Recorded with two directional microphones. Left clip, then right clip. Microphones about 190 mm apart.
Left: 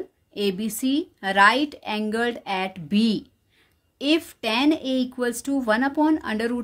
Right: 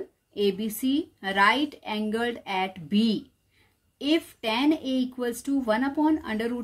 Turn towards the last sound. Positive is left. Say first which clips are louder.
# left 3 dB
turn(degrees=35)  # may be behind; listen again after turning